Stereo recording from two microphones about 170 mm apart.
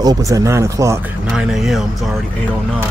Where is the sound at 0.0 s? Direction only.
20° right (ahead or behind).